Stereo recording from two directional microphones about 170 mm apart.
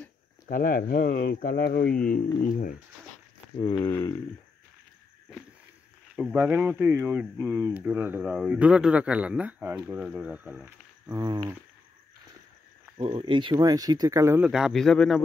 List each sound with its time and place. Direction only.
0.5 s speech: 55° left (ahead or behind)
2.0 s speech: 55° left (ahead or behind)
3.5 s speech: 30° left (ahead or behind)
3.9 s speech: 15° left (ahead or behind)
6.1 s speech: 10° right (ahead or behind)
12.9 s speech: 30° right (ahead or behind); by 14.5 s 15° right (ahead or behind)
14.5 s a man's voice: centre (ahead or behind)